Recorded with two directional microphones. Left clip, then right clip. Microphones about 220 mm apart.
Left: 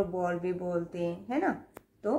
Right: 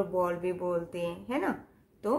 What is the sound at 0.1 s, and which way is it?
Speech, 30° right (ahead or behind).